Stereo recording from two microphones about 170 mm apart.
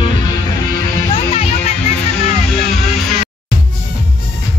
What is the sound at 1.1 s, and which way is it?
Music, 35° left (ahead or behind).